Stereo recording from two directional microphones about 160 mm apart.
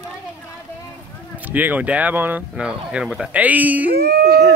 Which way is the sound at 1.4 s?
10° right (ahead or behind).